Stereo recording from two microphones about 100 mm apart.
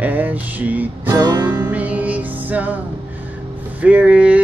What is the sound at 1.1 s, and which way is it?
Music, 40° right (ahead or behind).